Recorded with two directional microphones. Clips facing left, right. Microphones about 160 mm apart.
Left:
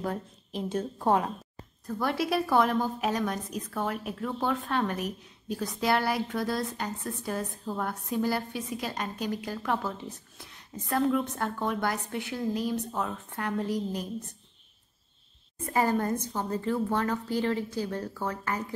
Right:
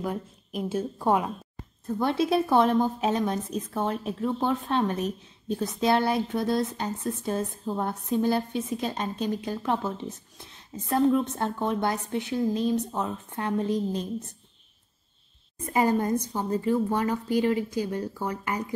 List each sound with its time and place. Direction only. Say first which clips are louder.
1.9 s a woman's voice: right 4 dB; 25° right (ahead or behind)
15.6 s a woman's voice: right 3 dB; 15° right (ahead or behind)